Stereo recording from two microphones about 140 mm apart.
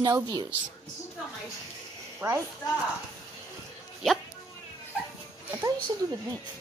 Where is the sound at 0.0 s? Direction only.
25° right (ahead or behind).